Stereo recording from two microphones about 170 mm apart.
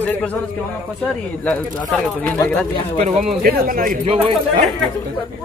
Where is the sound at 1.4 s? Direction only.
10° left (ahead or behind).